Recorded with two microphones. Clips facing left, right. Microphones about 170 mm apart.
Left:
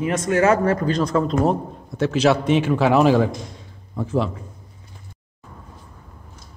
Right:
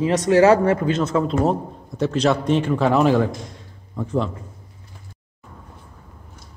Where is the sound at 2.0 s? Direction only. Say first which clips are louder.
Left 1 dB; 5° left (ahead or behind).